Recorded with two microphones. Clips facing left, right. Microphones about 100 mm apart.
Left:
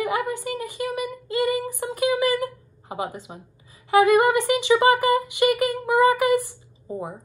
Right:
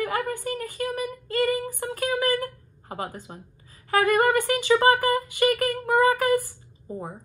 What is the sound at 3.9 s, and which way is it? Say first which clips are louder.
A woman's voice: left 4 dB; 15° left (ahead or behind).